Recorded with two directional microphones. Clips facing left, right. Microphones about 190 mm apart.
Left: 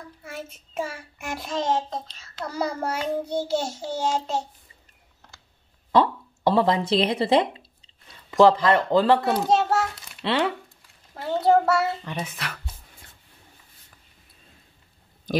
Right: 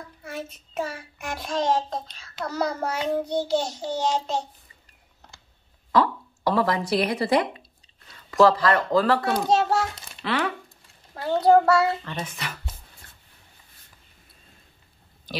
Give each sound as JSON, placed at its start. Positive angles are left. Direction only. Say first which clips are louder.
{"t": 0.2, "sound": "a child's voice", "louder": "right 3 dB", "side_deg": 5}
{"t": 2.1, "sound": "child singing", "louder": "right 1 dB", "side_deg": 10}
{"t": 5.9, "sound": "speech", "louder": "left 2 dB", "side_deg": 25}
{"t": 9.2, "sound": "a child's voice", "louder": "even", "side_deg": 0}
{"t": 10.2, "sound": "speech", "louder": "left 2 dB", "side_deg": 25}
{"t": 11.1, "sound": "a child's voice", "louder": "right 2 dB", "side_deg": 0}
{"t": 12.0, "sound": "child singing", "louder": "left 1 dB", "side_deg": 10}